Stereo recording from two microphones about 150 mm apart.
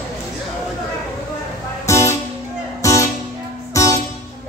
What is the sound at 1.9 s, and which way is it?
Music, 20° left (ahead or behind).